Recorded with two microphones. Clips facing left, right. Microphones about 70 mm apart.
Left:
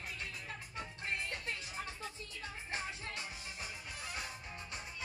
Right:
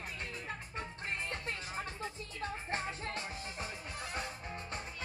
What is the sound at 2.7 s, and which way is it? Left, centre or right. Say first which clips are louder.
Music: right 2 dB; right.